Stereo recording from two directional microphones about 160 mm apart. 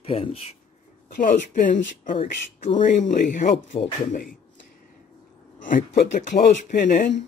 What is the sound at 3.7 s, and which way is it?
Speech, 35° left (ahead or behind).